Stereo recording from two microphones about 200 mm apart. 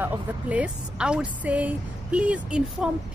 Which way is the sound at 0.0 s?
10° right (ahead or behind).